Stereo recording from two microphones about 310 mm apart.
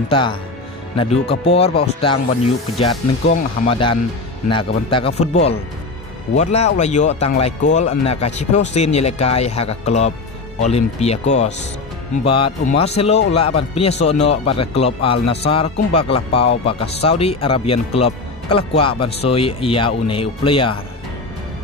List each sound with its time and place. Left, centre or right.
0.1 s speech: centre
2.8 s speech: centre